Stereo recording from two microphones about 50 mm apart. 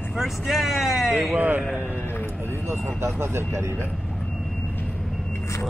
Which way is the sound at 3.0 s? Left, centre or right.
Right.